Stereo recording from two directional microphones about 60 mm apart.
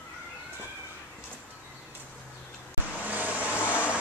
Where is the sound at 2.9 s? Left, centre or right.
Right.